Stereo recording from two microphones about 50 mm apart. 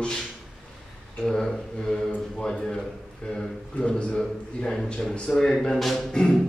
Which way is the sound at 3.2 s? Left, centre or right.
Centre.